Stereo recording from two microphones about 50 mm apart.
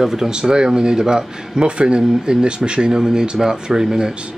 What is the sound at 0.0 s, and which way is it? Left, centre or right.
Speech, centre.